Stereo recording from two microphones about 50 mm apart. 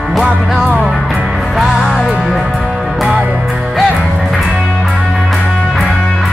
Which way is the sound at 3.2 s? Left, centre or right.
Right.